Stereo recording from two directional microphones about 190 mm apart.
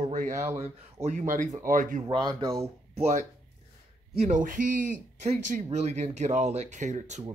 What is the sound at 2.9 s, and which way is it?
Speech, 35° right (ahead or behind).